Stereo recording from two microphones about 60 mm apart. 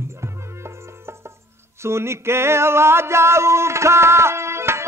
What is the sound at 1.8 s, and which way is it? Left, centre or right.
Music, right.